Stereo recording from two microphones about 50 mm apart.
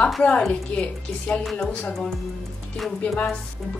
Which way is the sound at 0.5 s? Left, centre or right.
Left.